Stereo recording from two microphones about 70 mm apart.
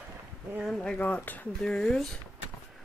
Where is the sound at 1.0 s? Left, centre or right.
Left.